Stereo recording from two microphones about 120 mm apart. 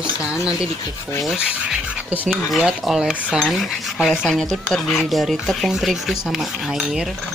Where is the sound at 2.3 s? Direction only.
5° right (ahead or behind).